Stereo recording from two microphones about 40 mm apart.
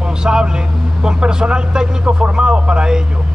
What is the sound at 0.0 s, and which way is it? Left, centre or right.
Speech, right.